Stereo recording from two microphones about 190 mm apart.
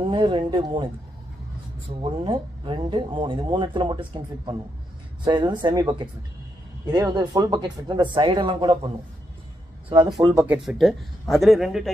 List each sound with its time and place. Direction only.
0.0 s speech: 25° right (ahead or behind)
2.2 s speech: 25° right (ahead or behind)
5.2 s speech: 25° right (ahead or behind)
10.4 s a man's voice: 5° right (ahead or behind)